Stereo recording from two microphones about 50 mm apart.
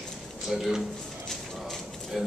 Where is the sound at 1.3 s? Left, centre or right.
Centre.